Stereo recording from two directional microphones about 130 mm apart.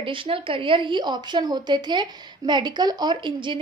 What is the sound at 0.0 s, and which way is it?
A woman's voice, 40° right (ahead or behind).